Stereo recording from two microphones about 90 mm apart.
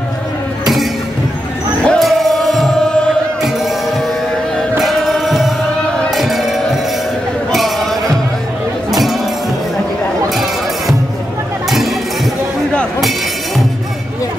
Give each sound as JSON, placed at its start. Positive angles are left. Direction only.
{"t": 1.9, "sound": "music", "side_deg": 0}
{"t": 4.7, "sound": "music", "side_deg": 0}
{"t": 10.3, "sound": "music", "side_deg": 0}